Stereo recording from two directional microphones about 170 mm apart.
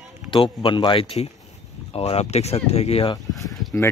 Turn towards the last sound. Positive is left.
turn(degrees=15)  # may be behind; listen again after turning